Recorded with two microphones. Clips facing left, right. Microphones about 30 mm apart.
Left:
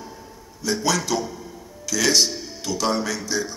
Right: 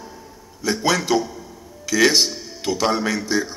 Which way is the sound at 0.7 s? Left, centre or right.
Right.